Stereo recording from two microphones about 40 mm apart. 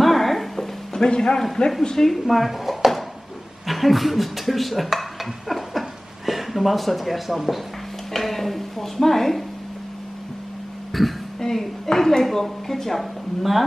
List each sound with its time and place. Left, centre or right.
0.0 s a sound: centre
0.9 s a man's voice: centre
2.0 s speech: centre
10.9 s throat clearing: centre
11.4 s a woman's voice: centre